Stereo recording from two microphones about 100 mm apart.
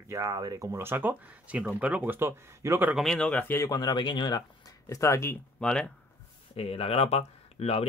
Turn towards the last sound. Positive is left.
turn(degrees=90)